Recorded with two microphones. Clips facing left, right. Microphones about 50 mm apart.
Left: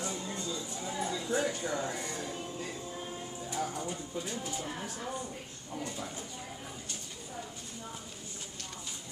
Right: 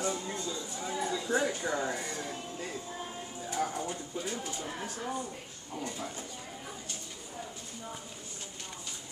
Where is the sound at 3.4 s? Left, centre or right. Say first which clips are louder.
Right 3 dB; right.